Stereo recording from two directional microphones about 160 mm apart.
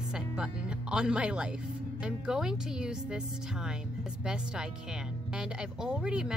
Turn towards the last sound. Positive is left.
turn(degrees=-5)  # may be behind; listen again after turning